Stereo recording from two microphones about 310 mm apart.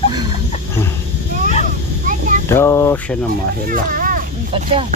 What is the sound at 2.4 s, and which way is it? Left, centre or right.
Speech, centre.